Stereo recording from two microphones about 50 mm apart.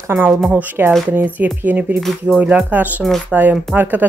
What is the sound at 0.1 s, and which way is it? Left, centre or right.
Speech, right.